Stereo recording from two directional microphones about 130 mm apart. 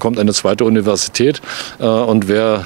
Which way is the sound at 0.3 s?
10° right (ahead or behind).